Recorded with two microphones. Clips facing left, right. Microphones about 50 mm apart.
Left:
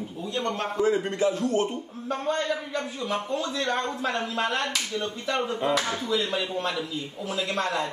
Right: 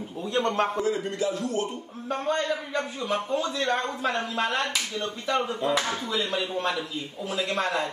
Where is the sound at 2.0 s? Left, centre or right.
Centre.